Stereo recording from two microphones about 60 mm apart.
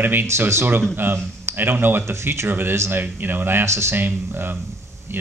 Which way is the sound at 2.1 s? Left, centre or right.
Right.